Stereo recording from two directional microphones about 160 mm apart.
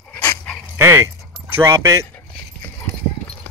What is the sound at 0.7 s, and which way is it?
Dog, 15° right (ahead or behind).